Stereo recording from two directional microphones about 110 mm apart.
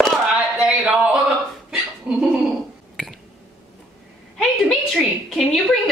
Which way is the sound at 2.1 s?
10° right (ahead or behind).